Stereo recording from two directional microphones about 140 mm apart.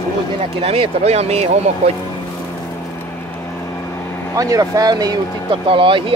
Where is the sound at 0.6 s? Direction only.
45° right (ahead or behind).